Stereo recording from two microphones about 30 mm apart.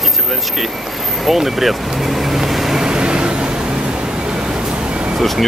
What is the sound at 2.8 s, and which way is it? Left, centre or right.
Vehicle, right.